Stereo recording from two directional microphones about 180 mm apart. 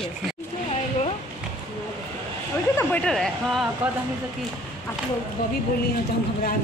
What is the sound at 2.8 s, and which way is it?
Speech, 5° left (ahead or behind).